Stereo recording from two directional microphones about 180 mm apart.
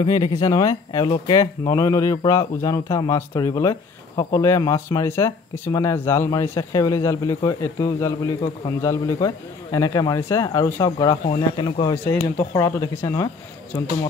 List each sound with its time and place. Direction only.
0.0 s speech: 25° left (ahead or behind)
11.2 s speech: 30° left (ahead or behind)